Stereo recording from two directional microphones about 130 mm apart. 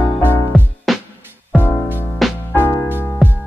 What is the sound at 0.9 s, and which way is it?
Music, centre (ahead or behind).